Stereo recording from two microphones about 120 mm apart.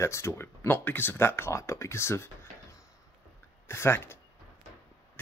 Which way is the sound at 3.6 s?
20° left (ahead or behind).